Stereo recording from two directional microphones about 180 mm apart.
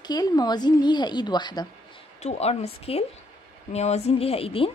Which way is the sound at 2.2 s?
35° left (ahead or behind).